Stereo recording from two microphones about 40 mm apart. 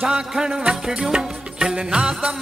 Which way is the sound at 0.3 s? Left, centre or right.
Centre.